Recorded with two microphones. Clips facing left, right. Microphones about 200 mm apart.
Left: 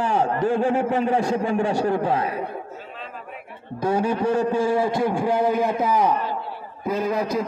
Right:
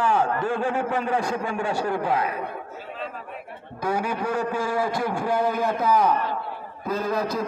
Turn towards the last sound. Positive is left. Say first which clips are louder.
# left 2 dB
turn(degrees=20)  # may be behind; listen again after turning